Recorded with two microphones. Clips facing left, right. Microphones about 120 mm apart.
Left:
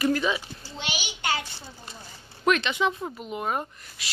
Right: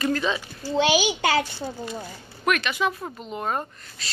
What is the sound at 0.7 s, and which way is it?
A child's voice, 90° right.